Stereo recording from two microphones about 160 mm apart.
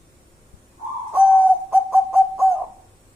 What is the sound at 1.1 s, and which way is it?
Bird, 10° right (ahead or behind).